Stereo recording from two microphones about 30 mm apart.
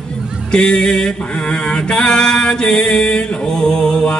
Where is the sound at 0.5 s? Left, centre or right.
Left.